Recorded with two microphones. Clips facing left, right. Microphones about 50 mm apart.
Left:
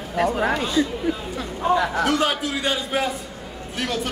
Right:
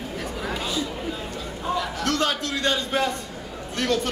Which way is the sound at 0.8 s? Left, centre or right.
Centre.